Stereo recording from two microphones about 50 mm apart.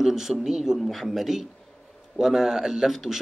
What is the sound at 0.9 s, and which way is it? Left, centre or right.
Speech, centre.